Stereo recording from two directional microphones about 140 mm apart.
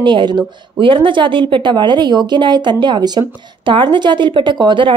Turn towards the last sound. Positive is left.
turn(degrees=-35)  # may be behind; listen again after turning